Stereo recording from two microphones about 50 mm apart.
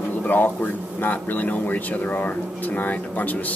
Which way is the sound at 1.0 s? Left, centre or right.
Left.